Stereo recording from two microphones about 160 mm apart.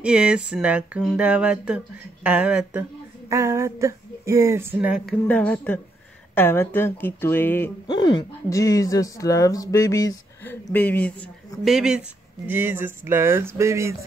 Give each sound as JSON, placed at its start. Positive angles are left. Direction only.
{"t": 0.0, "sound": "speech", "side_deg": -5}
{"t": 5.3, "sound": "speech", "side_deg": 10}
{"t": 7.8, "sound": "speech", "side_deg": 25}
{"t": 11.6, "sound": "speech", "side_deg": -5}